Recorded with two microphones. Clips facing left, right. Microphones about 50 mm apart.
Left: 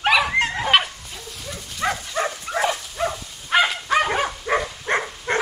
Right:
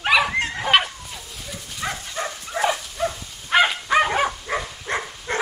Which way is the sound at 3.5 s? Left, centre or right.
Centre.